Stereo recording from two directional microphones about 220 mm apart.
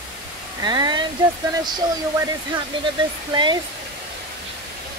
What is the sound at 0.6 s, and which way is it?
Speech, 20° right (ahead or behind).